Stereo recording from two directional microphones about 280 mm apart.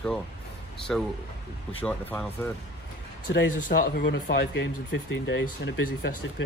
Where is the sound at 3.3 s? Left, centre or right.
Left.